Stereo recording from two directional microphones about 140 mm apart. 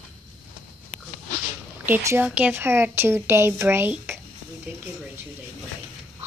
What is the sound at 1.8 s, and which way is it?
A woman's voice, 20° right (ahead or behind).